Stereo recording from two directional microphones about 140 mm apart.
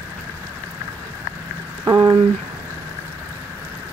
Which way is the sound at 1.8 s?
20° right (ahead or behind).